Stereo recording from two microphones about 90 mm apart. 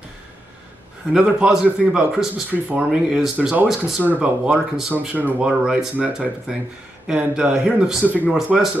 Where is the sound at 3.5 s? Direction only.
20° right (ahead or behind).